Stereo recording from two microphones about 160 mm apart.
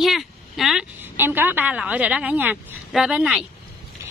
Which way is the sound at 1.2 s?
10° right (ahead or behind).